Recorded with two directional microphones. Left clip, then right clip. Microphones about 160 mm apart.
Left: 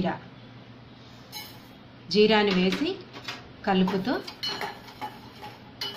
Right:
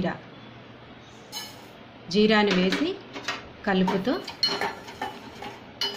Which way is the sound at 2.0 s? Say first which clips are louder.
Even; 25° right (ahead or behind).